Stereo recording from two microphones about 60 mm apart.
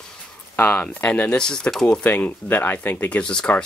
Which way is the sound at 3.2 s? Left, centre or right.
Centre.